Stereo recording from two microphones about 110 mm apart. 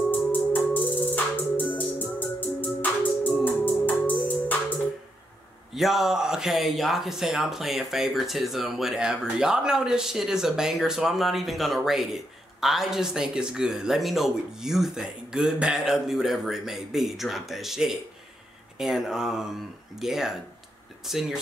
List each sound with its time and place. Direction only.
1.1 s music: 15° left (ahead or behind)
5.7 s speech: centre (ahead or behind)